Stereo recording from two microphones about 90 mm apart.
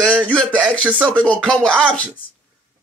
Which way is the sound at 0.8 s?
15° right (ahead or behind).